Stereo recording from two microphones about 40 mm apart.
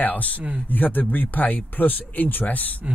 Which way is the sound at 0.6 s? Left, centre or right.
Left.